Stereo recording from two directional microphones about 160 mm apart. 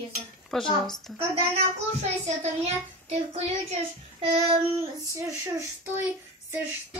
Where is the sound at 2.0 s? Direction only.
40° right (ahead or behind).